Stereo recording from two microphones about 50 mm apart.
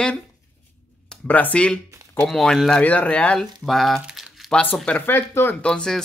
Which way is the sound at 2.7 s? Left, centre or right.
Left.